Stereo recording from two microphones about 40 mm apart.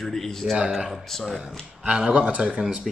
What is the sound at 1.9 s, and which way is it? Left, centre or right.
Speech, right.